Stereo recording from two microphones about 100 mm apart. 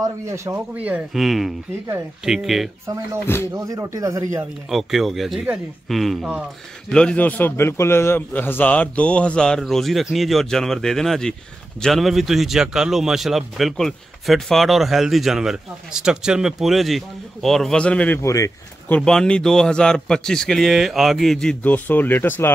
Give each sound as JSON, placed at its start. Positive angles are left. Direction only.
{"t": 0.0, "sound": "speech", "side_deg": -30}
{"t": 0.7, "sound": "speech", "side_deg": -15}
{"t": 1.1, "sound": "a man's voice", "side_deg": 0}
{"t": 3.5, "sound": "speech", "side_deg": -35}
{"t": 4.6, "sound": "a man's voice", "side_deg": 0}
{"t": 18.2, "sound": "speech", "side_deg": 30}
{"t": 18.9, "sound": "a man's voice", "side_deg": 5}
{"t": 21.6, "sound": "speech", "side_deg": 15}